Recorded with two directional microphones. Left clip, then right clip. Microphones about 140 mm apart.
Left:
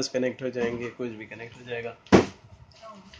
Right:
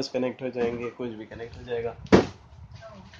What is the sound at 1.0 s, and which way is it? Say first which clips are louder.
Speech: even; 20° right (ahead or behind).